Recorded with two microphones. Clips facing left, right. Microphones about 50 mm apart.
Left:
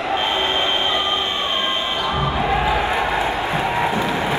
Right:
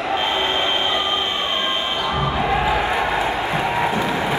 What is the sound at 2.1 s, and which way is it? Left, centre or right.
Basketball bounce, right.